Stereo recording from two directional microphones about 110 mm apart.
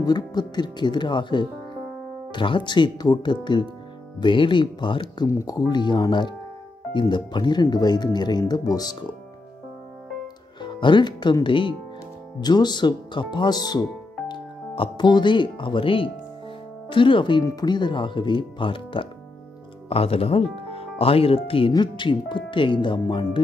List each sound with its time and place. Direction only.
0.0 s speech: 40° left (ahead or behind)
5.3 s speech: 30° left (ahead or behind)
10.6 s speech: 45° left (ahead or behind)
19.9 s speech: 60° left (ahead or behind)